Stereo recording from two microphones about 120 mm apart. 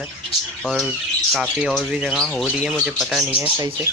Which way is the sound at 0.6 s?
Centre (ahead or behind).